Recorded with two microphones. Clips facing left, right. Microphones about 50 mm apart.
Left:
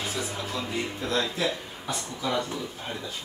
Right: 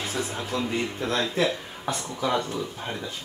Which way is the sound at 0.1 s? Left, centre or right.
Right.